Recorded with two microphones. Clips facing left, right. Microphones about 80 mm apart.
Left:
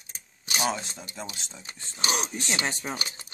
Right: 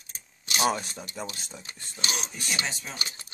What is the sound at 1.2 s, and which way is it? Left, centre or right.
Speech, centre.